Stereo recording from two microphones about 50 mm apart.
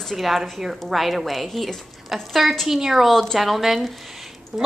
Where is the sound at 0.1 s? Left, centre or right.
Centre.